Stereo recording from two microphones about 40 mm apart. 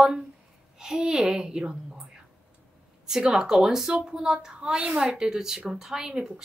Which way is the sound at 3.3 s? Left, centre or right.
Centre.